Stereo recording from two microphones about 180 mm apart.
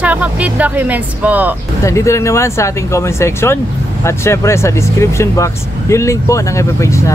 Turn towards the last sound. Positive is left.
turn(degrees=15)  # may be behind; listen again after turning